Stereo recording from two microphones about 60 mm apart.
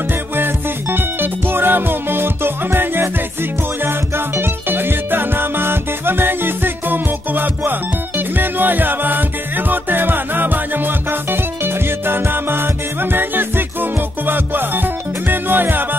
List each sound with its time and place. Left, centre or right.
0.4 s music: right